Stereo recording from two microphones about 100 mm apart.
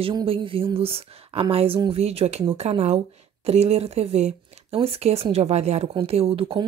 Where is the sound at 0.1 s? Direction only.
60° right (ahead or behind).